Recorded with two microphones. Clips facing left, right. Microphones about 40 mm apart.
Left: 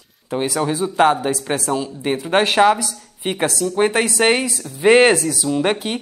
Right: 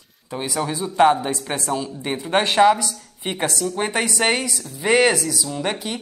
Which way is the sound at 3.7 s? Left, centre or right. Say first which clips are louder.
Left 5 dB; centre.